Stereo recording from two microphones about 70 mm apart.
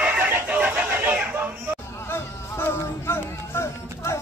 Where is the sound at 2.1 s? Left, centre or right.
Left.